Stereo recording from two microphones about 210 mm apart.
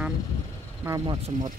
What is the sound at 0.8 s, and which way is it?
Speech, 15° right (ahead or behind).